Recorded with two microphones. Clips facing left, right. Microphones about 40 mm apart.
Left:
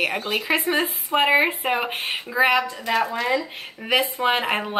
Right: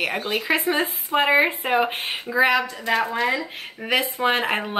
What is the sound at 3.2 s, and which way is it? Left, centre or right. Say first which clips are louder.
Speech: even; centre.